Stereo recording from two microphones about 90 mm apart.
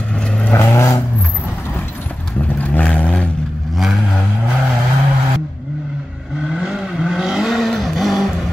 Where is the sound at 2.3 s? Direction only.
15° left (ahead or behind).